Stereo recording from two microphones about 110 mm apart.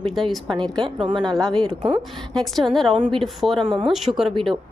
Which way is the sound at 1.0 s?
45° right (ahead or behind).